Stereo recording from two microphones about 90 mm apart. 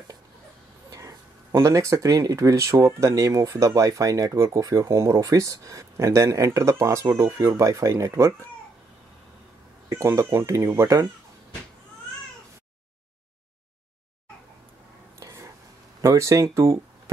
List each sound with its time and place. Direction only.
0.9 s speech: 35° right (ahead or behind)
9.8 s speech: 30° right (ahead or behind)
15.1 s whispering: 35° right (ahead or behind)
16.0 s speech: 35° right (ahead or behind)